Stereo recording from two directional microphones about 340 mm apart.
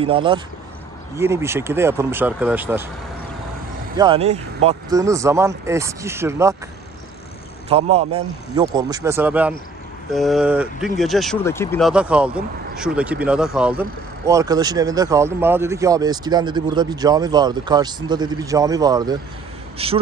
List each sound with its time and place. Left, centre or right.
0.0 s speech: centre
3.9 s speech: centre
7.7 s speech: centre
10.1 s a sound: centre
11.0 s speech: centre